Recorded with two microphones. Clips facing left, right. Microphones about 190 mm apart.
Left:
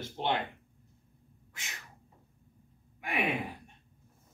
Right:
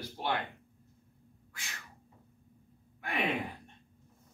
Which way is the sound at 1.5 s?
20° left (ahead or behind).